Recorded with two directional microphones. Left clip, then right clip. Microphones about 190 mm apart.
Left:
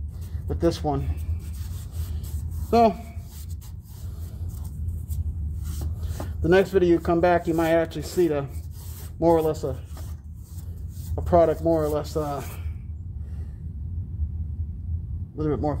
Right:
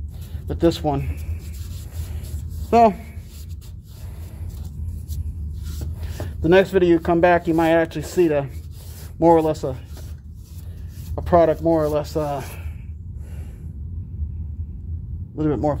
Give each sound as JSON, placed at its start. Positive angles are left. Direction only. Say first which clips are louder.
{"t": 0.5, "sound": "speech", "louder": "right 5 dB", "side_deg": -25}
{"t": 2.7, "sound": "speech", "louder": "right 4 dB", "side_deg": -15}
{"t": 6.4, "sound": "speech", "louder": "right 4 dB", "side_deg": -15}
{"t": 11.1, "sound": "speech", "louder": "right 3 dB", "side_deg": -15}
{"t": 15.3, "sound": "speech", "louder": "right 5 dB", "side_deg": -25}